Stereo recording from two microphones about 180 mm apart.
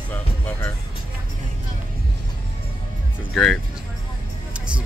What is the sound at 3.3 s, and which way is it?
Speech, 5° left (ahead or behind).